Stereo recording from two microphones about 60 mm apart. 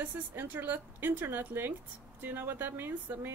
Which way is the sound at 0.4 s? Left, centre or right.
Right.